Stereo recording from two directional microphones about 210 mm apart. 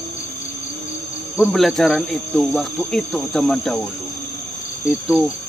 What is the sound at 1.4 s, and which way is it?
Speech, centre (ahead or behind).